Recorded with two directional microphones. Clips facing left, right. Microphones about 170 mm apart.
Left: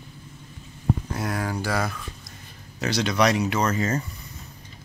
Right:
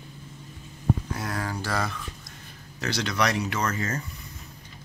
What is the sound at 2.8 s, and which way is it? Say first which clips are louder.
Speech: left 4 dB; 15° left (ahead or behind).